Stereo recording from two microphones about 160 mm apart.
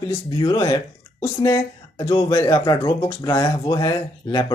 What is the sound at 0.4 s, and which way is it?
Speech, 30° left (ahead or behind).